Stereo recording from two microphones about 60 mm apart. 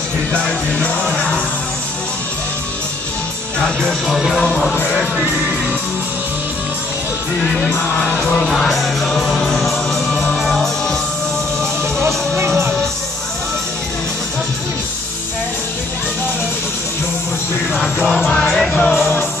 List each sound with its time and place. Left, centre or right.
0.3 s music: centre
3.6 s speech: centre
4.4 s music: centre
7.4 s speech: centre
8.3 s music: centre
18.5 s music: centre